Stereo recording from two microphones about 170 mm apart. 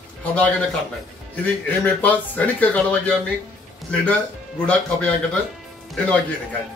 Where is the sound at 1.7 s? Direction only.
10° left (ahead or behind).